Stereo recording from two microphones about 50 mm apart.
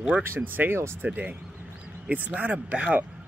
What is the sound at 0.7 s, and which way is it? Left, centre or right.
Speech, right.